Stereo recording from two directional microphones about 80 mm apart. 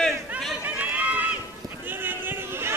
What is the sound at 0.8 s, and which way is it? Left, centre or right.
Run, centre.